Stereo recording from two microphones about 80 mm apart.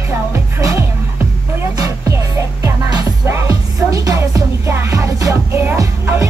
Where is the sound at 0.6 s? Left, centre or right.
Right.